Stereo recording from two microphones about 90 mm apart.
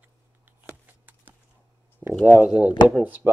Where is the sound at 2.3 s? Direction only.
15° right (ahead or behind).